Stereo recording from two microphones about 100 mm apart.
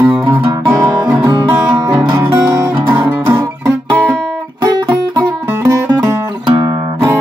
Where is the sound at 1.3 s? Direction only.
50° right (ahead or behind).